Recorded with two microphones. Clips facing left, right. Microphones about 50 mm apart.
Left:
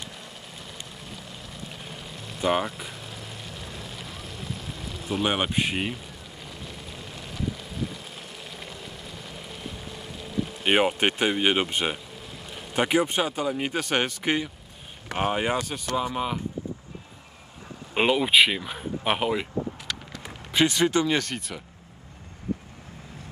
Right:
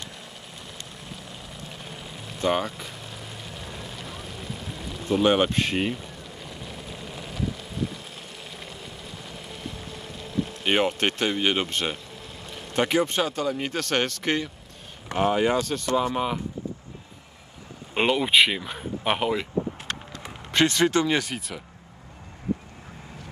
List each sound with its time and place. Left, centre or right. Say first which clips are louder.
1.7 s vehicle: even; centre
6.6 s vehicle: right 2 dB; centre
8.5 s boat: even; centre
12.4 s speech: even; centre
15.1 s speech: right 3 dB; left
17.9 s speech: even; centre
19.9 s a sound: right 1 dB; right
20.6 s speech: right 1 dB; centre
21.1 s speech: right 1 dB; centre